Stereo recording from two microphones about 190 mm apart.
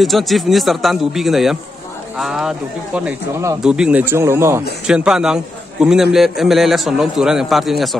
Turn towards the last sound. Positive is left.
turn(degrees=0)  # may be behind; listen again after turning